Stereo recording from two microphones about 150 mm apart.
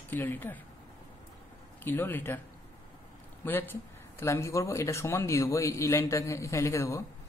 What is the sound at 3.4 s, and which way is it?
Speech, 15° left (ahead or behind).